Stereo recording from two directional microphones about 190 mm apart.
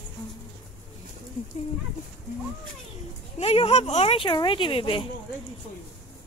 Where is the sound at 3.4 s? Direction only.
30° left (ahead or behind).